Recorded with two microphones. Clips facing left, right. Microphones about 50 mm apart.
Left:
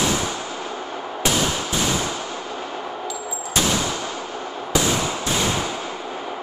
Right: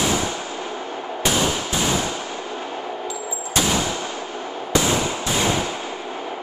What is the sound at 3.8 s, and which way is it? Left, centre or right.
Fireworks, centre.